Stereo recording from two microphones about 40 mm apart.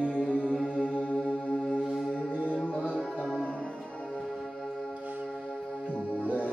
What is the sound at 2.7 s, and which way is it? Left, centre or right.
Music, left.